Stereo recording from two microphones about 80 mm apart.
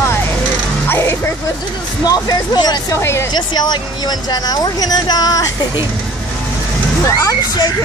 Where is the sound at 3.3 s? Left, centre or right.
Left.